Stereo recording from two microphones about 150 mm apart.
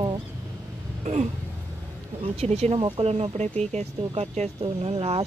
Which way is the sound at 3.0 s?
45° right (ahead or behind).